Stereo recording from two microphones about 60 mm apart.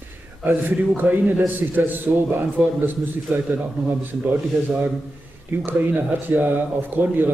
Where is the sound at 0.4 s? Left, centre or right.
Right.